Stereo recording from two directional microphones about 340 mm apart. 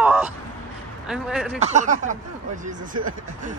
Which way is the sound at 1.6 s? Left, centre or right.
Centre.